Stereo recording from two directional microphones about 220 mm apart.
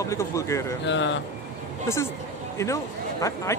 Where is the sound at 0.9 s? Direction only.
55° left (ahead or behind).